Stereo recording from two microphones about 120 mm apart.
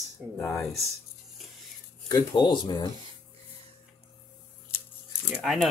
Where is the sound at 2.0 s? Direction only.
35° left (ahead or behind).